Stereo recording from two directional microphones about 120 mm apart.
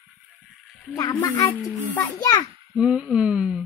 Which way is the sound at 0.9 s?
35° left (ahead or behind).